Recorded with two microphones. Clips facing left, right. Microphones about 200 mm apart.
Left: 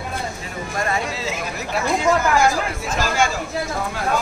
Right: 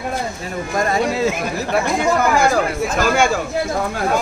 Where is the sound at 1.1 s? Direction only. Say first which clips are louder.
Right 8 dB; 55° right (ahead or behind).